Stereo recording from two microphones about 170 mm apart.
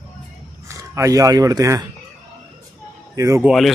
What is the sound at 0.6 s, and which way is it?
Speech, 15° right (ahead or behind).